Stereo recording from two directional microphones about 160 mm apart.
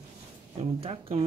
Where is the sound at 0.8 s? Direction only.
35° right (ahead or behind).